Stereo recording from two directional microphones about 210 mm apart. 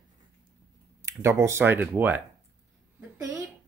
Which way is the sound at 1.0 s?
15° right (ahead or behind).